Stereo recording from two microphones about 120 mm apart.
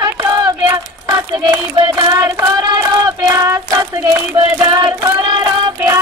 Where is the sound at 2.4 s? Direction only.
20° right (ahead or behind).